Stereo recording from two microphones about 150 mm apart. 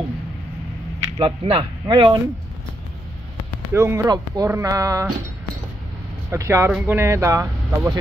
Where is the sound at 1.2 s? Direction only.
35° right (ahead or behind).